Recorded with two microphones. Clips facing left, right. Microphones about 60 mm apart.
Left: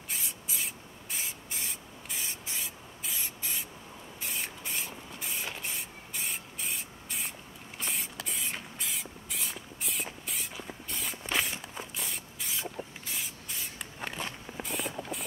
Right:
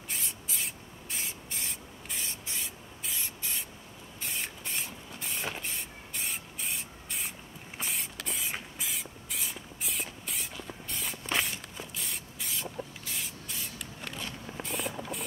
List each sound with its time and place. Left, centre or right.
0.1 s spray: centre
13.7 s a sound: left
14.6 s mechanisms: centre